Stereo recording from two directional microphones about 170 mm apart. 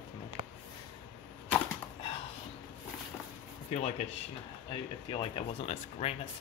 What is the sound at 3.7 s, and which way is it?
Speech, 45° left (ahead or behind).